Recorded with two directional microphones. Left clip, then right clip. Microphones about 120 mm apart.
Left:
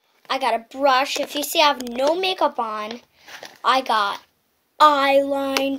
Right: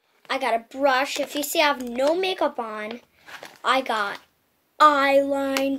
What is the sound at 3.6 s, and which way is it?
A child's voice, 25° right (ahead or behind).